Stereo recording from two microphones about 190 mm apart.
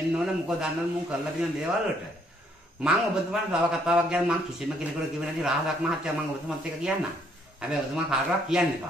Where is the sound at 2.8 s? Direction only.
5° right (ahead or behind).